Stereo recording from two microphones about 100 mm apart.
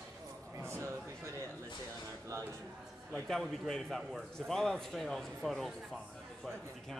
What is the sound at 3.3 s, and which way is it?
A man's voice, 5° left (ahead or behind).